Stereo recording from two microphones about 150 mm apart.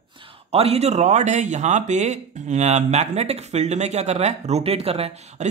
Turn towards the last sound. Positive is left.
turn(degrees=-40)  # may be behind; listen again after turning